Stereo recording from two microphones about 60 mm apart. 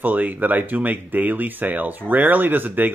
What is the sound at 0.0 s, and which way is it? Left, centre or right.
Speech, right.